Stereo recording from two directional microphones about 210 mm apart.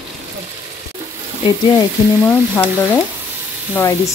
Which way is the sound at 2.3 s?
10° left (ahead or behind).